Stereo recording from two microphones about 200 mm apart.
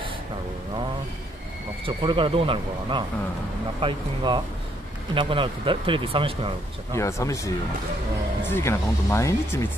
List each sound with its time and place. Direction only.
1.9 s speech: 25° right (ahead or behind)
7.0 s speech: 15° left (ahead or behind)